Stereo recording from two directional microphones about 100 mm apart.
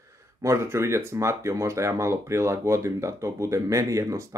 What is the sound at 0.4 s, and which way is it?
Speech, 30° right (ahead or behind).